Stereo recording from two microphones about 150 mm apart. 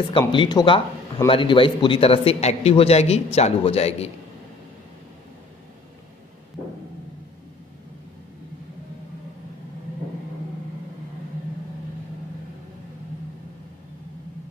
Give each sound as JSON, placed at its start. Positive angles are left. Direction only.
{"t": 0.3, "sound": "a man's voice", "side_deg": 30}